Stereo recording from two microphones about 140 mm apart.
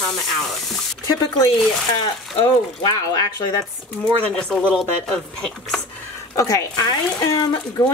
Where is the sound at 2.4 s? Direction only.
30° left (ahead or behind).